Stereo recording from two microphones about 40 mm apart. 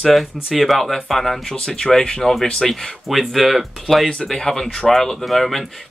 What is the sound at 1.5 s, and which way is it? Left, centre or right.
Speech, left.